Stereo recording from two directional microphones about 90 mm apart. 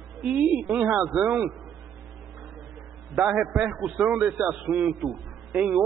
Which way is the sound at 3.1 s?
10° right (ahead or behind).